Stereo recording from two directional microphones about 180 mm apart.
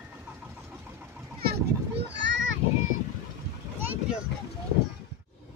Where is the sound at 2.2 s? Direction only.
90° right.